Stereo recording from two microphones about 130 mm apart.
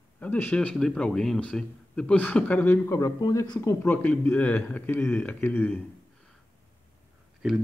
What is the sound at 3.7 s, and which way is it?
A man's voice, 15° left (ahead or behind).